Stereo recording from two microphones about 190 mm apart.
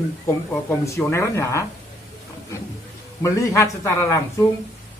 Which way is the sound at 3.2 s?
15° left (ahead or behind).